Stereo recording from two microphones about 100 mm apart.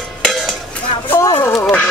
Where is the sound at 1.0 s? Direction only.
25° left (ahead or behind).